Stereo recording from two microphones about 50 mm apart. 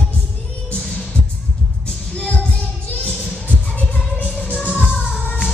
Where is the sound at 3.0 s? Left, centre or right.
Left.